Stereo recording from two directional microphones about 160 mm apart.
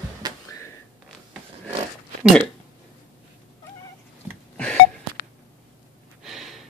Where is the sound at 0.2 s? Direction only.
25° right (ahead or behind).